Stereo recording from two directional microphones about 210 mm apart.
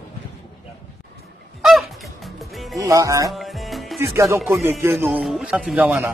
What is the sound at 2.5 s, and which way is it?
Music, centre (ahead or behind).